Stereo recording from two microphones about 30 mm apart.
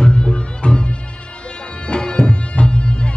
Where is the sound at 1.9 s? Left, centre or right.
Left.